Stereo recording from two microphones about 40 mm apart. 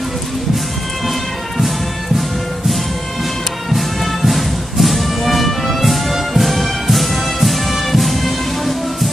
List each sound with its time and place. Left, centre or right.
3.7 s music: centre